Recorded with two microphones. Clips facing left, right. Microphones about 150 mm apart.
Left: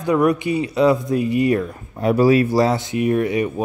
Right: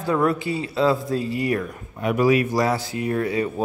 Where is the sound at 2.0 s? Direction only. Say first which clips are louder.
Left 4 dB; 35° left (ahead or behind).